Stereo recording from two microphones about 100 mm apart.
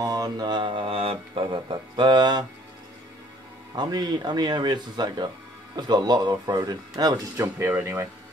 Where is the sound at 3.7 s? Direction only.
45° right (ahead or behind).